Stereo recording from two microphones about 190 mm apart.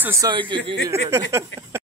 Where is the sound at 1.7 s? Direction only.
15° right (ahead or behind).